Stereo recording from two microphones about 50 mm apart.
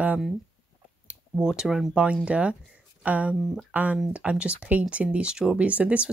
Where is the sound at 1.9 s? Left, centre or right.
Right.